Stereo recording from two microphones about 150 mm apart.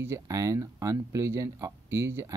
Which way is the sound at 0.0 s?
20° right (ahead or behind).